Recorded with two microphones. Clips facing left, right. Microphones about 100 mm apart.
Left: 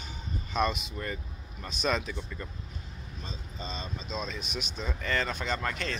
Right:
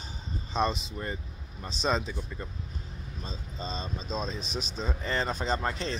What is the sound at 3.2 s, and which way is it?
Speech, 35° right (ahead or behind).